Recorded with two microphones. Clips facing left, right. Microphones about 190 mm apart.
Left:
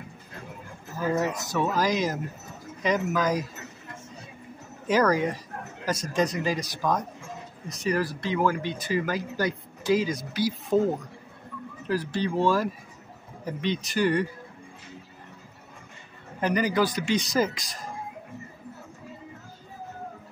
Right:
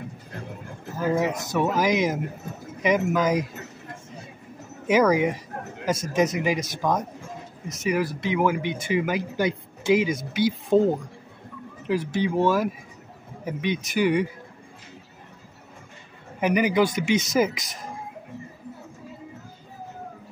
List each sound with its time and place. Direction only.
1.4 s speech: 20° right (ahead or behind)
4.8 s speech: 15° right (ahead or behind)
11.8 s speech: 15° right (ahead or behind)
16.3 s speech: 15° right (ahead or behind)